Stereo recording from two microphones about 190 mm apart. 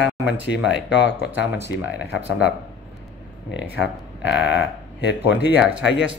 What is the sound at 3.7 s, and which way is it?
Speech, 70° left (ahead or behind).